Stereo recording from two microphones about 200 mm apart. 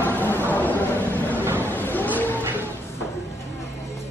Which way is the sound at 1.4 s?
10° right (ahead or behind).